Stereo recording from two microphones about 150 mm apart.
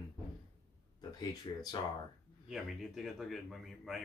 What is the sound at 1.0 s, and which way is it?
Speech, 30° left (ahead or behind).